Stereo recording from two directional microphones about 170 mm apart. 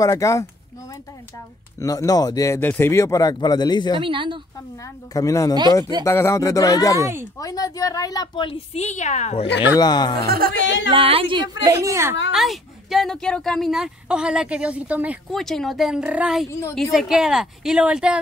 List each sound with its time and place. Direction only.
0.0 s speech: 20° left (ahead or behind)
1.8 s speech: 20° left (ahead or behind)
4.0 s a woman's voice: 30° right (ahead or behind)
5.1 s speech: 20° left (ahead or behind)
7.0 s speech: 15° right (ahead or behind)
7.3 s speech: 20° left (ahead or behind); by 9.5 s 40° left (ahead or behind)
9.8 s speech: 25° left (ahead or behind)
10.2 s speech: 60° right (ahead or behind)
10.9 s a woman's voice: 35° right (ahead or behind)
11.6 s speech: 20° right (ahead or behind)
12.3 s speech: centre (ahead or behind)
15.3 s speech: centre (ahead or behind)
16.4 s speech: 15° left (ahead or behind)
16.7 s speech: centre (ahead or behind)